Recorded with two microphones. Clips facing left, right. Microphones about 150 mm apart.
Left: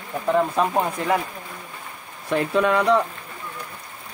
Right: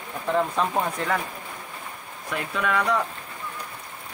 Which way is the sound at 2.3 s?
30° left (ahead or behind).